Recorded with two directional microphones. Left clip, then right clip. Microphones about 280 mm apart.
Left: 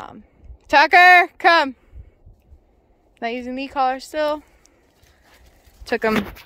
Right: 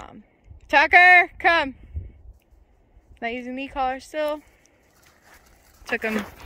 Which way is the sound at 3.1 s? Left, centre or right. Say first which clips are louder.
Left 3 dB; centre.